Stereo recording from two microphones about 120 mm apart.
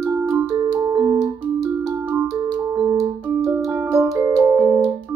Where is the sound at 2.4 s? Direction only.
35° right (ahead or behind).